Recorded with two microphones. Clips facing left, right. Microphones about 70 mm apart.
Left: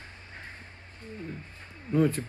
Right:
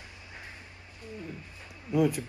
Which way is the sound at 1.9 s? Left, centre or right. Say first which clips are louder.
Left 1 dB; left.